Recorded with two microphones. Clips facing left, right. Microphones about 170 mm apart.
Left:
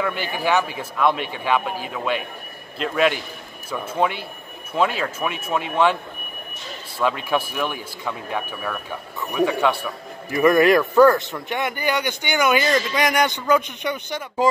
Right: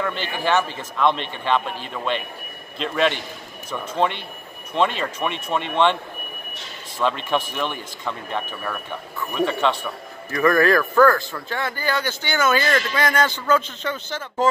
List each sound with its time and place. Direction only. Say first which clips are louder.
0.0 s speech: left 1 dB; 10° left (ahead or behind)
7.0 s speech: even; 5° left (ahead or behind)
10.3 s speech: left 2 dB; 20° left (ahead or behind)